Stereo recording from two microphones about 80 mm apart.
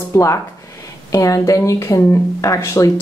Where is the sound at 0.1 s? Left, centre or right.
Left.